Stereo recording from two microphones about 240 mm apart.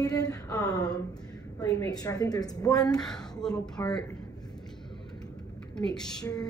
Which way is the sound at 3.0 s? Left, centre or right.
Centre.